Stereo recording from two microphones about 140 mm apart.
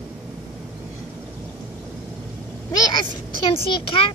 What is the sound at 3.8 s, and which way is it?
Speech, 40° left (ahead or behind).